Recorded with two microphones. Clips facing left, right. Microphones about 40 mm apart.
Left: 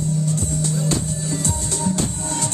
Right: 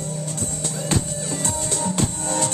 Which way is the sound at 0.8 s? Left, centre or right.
Right.